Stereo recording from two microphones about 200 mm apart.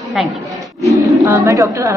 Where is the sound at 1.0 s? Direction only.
15° right (ahead or behind).